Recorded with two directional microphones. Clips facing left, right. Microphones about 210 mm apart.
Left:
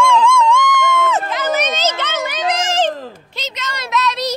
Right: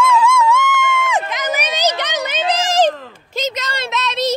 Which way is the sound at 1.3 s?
15° right (ahead or behind).